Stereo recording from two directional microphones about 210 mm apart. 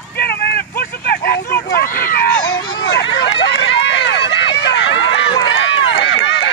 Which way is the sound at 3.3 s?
55° left (ahead or behind).